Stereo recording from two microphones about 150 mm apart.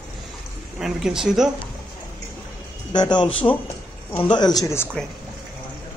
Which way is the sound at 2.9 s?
30° left (ahead or behind).